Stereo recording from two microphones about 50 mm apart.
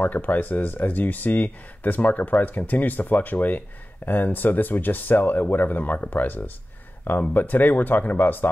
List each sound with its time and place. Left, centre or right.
0.0 s speech: left